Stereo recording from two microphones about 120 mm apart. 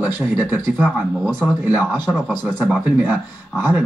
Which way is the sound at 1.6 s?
15° right (ahead or behind).